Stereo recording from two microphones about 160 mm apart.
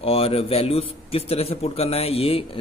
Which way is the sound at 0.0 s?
35° left (ahead or behind).